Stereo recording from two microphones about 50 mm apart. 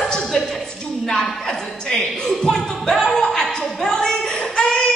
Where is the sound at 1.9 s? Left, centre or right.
Centre.